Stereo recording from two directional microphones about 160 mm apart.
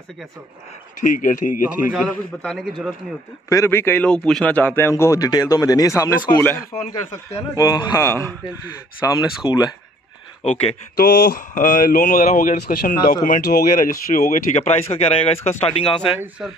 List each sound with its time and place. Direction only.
1.0 s a man's voice: 55° left (ahead or behind)
2.0 s a man's voice: 5° left (ahead or behind)
3.4 s a man's voice: 20° left (ahead or behind)
6.7 s a man's voice: 45° left (ahead or behind)
7.5 s a man's voice: 25° left (ahead or behind)
10.4 s speech: 40° left (ahead or behind)
11.0 s speech: 65° left (ahead or behind); by 16.2 s 35° left (ahead or behind)
16.2 s a man's voice: 5° right (ahead or behind)